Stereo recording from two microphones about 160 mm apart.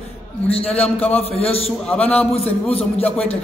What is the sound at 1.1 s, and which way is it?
A man's voice, 40° left (ahead or behind).